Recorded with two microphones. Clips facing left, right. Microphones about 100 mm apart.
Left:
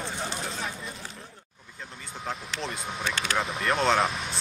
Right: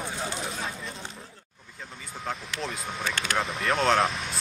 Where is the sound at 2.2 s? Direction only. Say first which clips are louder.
Right 1 dB; centre (ahead or behind).